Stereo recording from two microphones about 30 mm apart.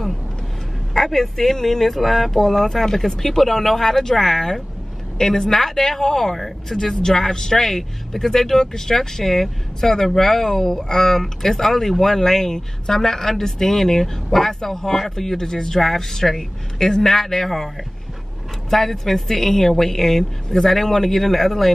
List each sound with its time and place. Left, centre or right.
0.9 s speech: centre
6.7 s speech: left
15.8 s speech: centre
18.7 s speech: centre